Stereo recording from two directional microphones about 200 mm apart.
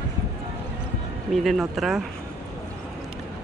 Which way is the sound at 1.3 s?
Centre (ahead or behind).